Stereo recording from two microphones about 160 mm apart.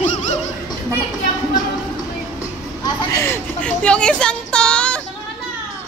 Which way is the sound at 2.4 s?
20° left (ahead or behind).